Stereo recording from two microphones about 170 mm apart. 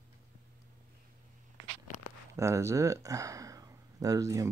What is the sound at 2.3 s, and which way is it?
Speech, 15° right (ahead or behind).